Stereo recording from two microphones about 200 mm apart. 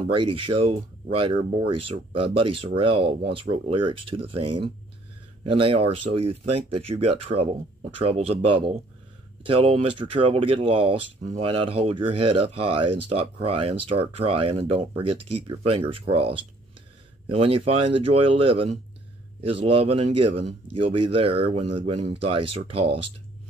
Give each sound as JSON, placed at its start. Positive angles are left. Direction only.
{"t": 0.1, "sound": "speech", "side_deg": -25}